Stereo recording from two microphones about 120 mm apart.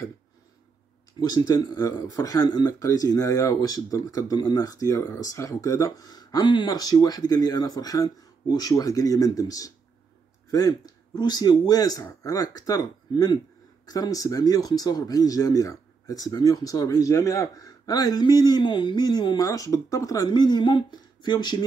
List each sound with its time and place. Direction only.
1.2 s speech: 30° left (ahead or behind)